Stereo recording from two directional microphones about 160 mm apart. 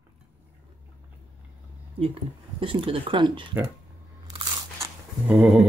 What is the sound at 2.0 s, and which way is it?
Speech, 35° right (ahead or behind).